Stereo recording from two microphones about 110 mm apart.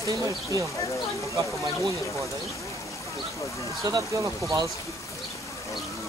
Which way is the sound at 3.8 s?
35° right (ahead or behind).